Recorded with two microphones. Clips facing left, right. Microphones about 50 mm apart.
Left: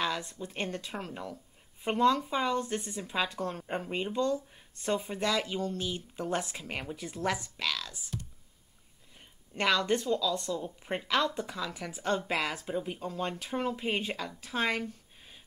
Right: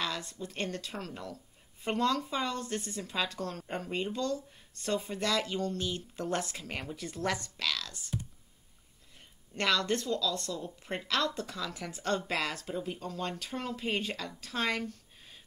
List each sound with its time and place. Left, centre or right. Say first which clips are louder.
0.0 s speech: left 3 dB; centre
9.6 s speech: left 2 dB; centre